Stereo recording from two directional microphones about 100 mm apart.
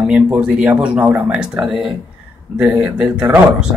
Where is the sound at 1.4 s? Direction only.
5° right (ahead or behind).